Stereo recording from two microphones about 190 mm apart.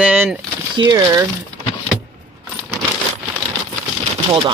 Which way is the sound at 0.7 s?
20° right (ahead or behind).